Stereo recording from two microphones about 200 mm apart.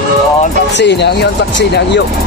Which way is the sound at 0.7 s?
60° left (ahead or behind).